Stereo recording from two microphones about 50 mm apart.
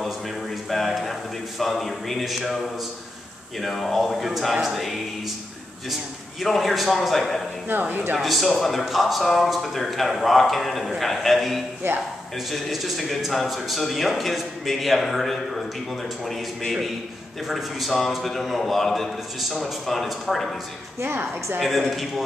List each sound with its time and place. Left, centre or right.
0.7 s a sound: centre
1.6 s a man's voice: centre
6.4 s a man's voice: centre
7.9 s speech: right
8.2 s a man's voice: centre
11.8 s speech: right
12.4 s a man's voice: centre
21.5 s a man's voice: centre